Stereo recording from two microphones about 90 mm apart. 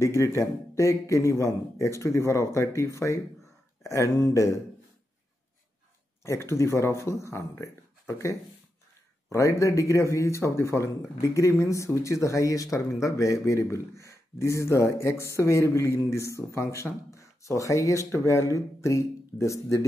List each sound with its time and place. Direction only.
0.0 s speech: 35° left (ahead or behind)
6.2 s speech: 30° left (ahead or behind)